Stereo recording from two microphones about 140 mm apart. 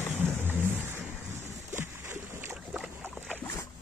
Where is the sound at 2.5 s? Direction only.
10° right (ahead or behind).